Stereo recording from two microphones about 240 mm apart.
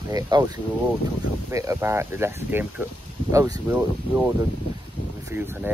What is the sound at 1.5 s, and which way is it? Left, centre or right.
Speech, centre.